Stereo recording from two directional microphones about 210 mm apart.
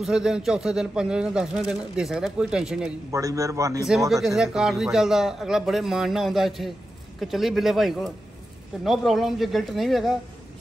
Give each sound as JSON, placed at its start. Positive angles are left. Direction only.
{"t": 0.0, "sound": "speech", "side_deg": -5}
{"t": 3.1, "sound": "a man's voice", "side_deg": -15}
{"t": 4.1, "sound": "speech", "side_deg": 0}